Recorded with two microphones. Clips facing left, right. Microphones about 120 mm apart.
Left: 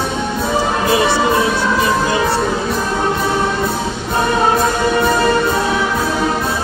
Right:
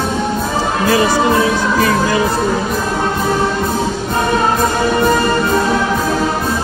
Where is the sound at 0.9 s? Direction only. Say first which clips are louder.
Right 2 dB; 25° left (ahead or behind).